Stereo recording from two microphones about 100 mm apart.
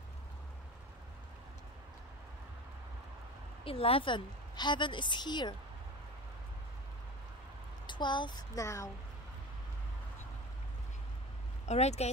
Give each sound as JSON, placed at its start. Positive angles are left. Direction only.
{"t": 3.6, "sound": "a woman's voice", "side_deg": 70}
{"t": 7.8, "sound": "a woman's voice", "side_deg": 50}
{"t": 8.5, "sound": "speech", "side_deg": 30}
{"t": 11.7, "sound": "speech", "side_deg": 90}